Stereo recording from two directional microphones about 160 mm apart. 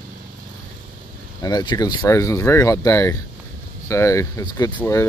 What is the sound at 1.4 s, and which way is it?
Speech, 25° left (ahead or behind).